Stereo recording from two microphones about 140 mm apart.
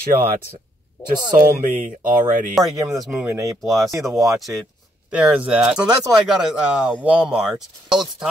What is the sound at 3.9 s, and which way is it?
Speech, 20° right (ahead or behind).